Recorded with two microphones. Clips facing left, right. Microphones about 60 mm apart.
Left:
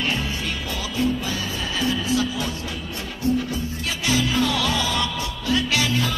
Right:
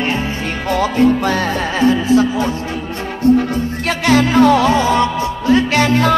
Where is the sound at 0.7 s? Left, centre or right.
Right.